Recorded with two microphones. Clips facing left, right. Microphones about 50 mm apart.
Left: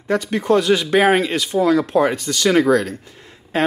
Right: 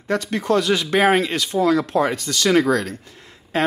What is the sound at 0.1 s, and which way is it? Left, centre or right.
Speech, centre.